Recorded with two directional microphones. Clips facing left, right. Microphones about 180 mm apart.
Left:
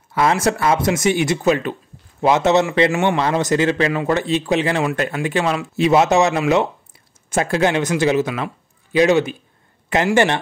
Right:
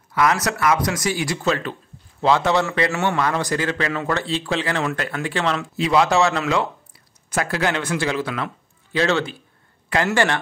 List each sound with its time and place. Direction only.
0.1 s a man's voice: 25° left (ahead or behind); by 5.7 s 10° left (ahead or behind)
5.8 s a man's voice: 25° left (ahead or behind)